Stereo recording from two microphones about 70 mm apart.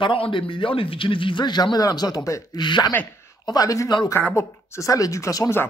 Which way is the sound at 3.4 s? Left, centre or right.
Left.